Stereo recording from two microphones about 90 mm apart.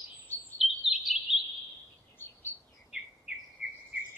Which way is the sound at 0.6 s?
Centre (ahead or behind).